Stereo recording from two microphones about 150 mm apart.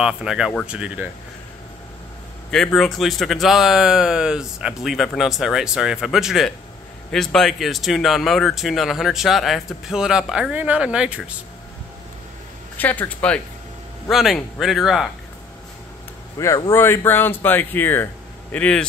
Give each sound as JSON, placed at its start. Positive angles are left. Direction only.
{"t": 0.0, "sound": "speech", "side_deg": -5}
{"t": 2.5, "sound": "speech", "side_deg": 5}
{"t": 12.7, "sound": "speech", "side_deg": 10}
{"t": 16.3, "sound": "speech", "side_deg": 20}